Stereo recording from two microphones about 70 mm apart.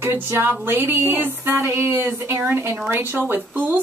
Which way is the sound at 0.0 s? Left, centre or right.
Right.